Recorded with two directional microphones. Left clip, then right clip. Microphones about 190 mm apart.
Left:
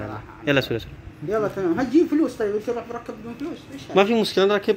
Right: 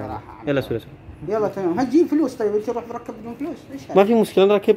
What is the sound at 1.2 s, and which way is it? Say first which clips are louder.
Speech: right 1 dB; 35° right (ahead or behind).